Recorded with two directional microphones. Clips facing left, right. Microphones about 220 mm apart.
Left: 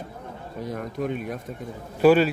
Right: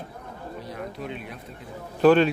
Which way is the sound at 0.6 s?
45° left (ahead or behind).